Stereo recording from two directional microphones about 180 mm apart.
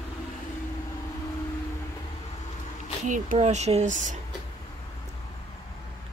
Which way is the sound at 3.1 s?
40° right (ahead or behind).